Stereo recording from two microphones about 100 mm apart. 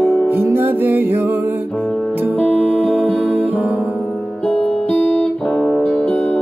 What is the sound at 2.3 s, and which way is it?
Music, 15° left (ahead or behind).